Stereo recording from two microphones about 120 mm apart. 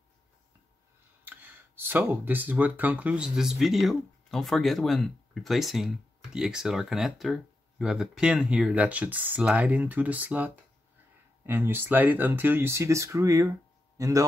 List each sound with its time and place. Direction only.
1.2 s a man's voice: 15° right (ahead or behind)